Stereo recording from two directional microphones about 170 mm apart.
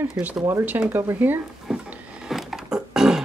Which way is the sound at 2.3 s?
Centre (ahead or behind).